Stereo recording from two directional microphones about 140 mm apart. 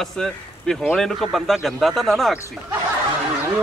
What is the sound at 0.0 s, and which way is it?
A man's voice, 5° left (ahead or behind).